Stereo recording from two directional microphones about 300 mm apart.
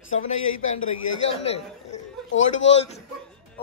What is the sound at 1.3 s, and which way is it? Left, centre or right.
Speech, centre.